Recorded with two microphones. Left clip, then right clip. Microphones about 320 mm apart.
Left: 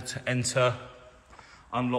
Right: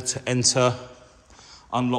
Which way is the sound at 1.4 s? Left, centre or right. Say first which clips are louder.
Right 5 dB; centre.